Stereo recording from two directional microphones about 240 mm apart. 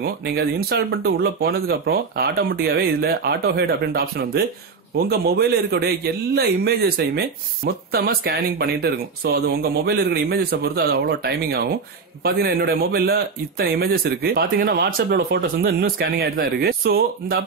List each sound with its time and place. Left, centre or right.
0.0 s a man's voice: right